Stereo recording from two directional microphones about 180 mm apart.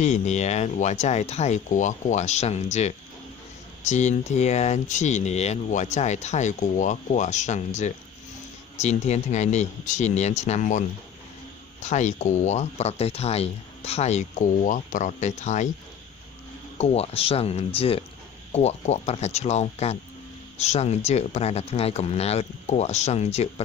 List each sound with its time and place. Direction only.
0.0 s speech: 40° left (ahead or behind)
11.9 s speech: 40° left (ahead or behind)
16.7 s speech: 35° left (ahead or behind)